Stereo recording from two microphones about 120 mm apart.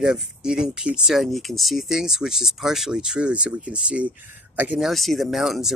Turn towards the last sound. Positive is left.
turn(degrees=0)  # may be behind; listen again after turning